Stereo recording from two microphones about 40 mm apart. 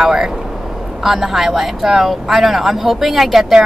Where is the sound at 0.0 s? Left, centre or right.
Centre.